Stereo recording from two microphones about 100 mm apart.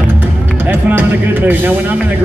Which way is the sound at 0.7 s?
15° right (ahead or behind).